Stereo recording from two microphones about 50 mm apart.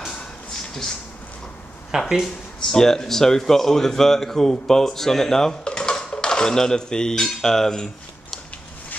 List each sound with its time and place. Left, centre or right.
0.1 s a sound: centre
1.9 s speech: centre
2.2 s speech: centre